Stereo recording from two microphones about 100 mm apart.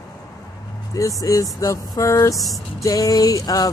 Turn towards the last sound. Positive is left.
turn(degrees=40)  # may be behind; listen again after turning